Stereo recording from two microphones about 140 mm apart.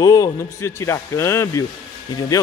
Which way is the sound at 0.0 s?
25° left (ahead or behind).